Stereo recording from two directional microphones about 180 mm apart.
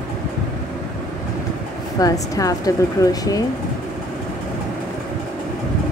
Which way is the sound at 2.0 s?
20° left (ahead or behind).